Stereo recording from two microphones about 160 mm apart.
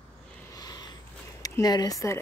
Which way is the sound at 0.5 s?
25° left (ahead or behind).